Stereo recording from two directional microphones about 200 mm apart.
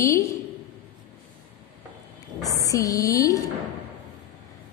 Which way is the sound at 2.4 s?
15° left (ahead or behind).